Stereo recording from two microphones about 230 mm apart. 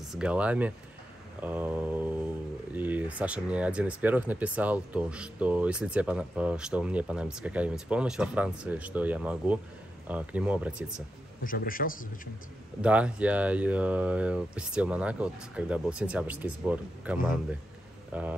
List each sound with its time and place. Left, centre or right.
0.1 s speech: centre
1.4 s mantra: centre
2.7 s speech: centre
11.4 s a man's voice: left
12.8 s speech: centre